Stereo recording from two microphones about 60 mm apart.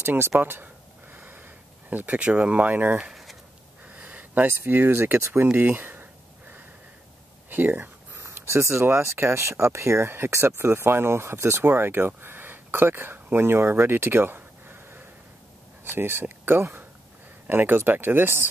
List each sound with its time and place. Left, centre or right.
0.0 s speech: right
1.1 s a sound: right
4.5 s speech: right
7.4 s speech: right
8.1 s a sound: right
8.8 s speech: right
11.6 s speech: right
12.2 s a sound: right
15.8 s speech: right